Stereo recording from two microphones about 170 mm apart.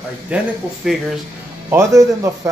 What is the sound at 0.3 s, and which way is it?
Speech, 5° right (ahead or behind).